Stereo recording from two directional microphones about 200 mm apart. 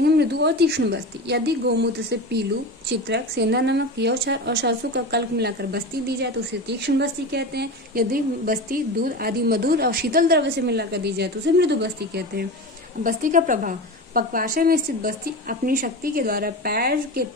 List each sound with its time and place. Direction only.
0.0 s a woman's voice: 55° right (ahead or behind)
13.0 s a woman's voice: 40° right (ahead or behind)